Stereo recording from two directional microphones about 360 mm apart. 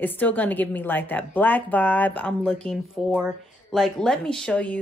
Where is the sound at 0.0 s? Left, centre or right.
Centre.